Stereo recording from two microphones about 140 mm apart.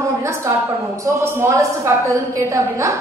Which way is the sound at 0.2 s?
20° right (ahead or behind).